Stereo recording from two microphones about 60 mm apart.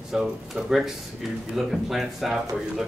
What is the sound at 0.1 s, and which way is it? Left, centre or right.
A man's voice, centre.